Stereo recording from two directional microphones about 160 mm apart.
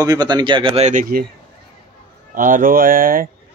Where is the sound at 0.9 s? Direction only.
60° right (ahead or behind).